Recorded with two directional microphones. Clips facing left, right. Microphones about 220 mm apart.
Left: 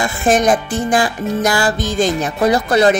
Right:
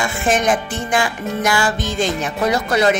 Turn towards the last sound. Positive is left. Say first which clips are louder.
# left 4 dB
turn(degrees=35)  # may be behind; listen again after turning